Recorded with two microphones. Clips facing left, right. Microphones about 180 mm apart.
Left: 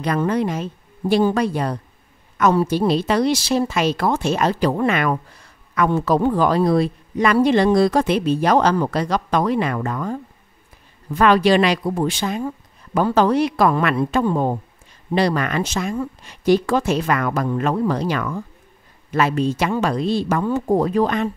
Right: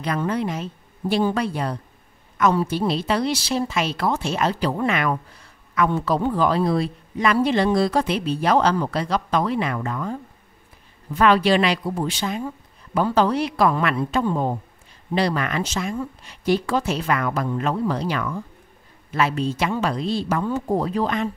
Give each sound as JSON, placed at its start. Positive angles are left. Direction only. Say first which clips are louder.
{"t": 0.0, "sound": "speech", "louder": "left 4 dB", "side_deg": 45}
{"t": 7.9, "sound": "speech", "louder": "left 4 dB", "side_deg": 45}
{"t": 11.1, "sound": "speech", "louder": "left 3 dB", "side_deg": 45}
{"t": 15.1, "sound": "speech", "louder": "left 3 dB", "side_deg": 40}
{"t": 20.5, "sound": "speech", "louder": "left 5 dB", "side_deg": 55}